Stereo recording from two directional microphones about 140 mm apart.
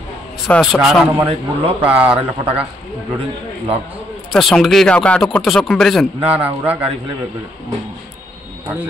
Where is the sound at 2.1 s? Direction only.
40° right (ahead or behind).